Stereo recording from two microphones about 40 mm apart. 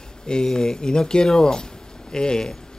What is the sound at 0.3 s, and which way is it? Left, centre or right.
Speech, centre.